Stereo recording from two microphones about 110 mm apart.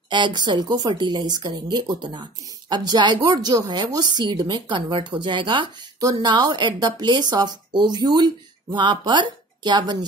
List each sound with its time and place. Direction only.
0.1 s a woman's voice: 40° right (ahead or behind)
5.9 s a woman's voice: 40° right (ahead or behind)